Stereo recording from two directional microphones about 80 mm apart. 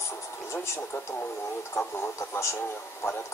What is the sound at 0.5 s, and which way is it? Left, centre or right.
Speech, left.